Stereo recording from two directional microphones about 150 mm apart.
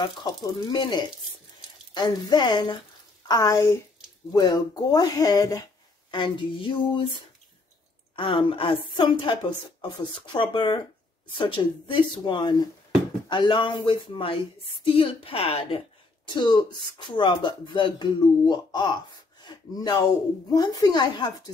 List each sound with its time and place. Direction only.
0.2 s a woman's voice: 25° left (ahead or behind)
8.2 s a woman's voice: 35° left (ahead or behind)